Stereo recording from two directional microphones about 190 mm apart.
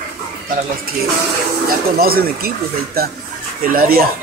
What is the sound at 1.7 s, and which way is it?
Speech, 50° right (ahead or behind).